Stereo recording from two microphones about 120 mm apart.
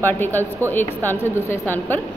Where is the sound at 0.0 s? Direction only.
15° left (ahead or behind).